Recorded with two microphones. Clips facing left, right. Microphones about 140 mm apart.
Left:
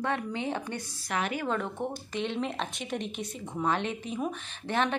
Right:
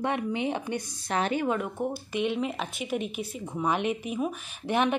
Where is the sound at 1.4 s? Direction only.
10° right (ahead or behind).